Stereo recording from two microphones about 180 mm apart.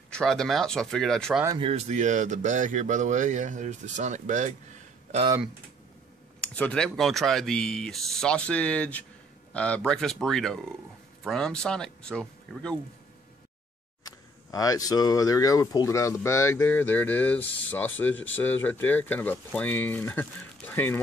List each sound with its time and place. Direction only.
0.1 s speech: centre (ahead or behind)
1.6 s speech: 35° right (ahead or behind)
6.4 s speech: 5° left (ahead or behind)
14.0 s speech: 20° left (ahead or behind)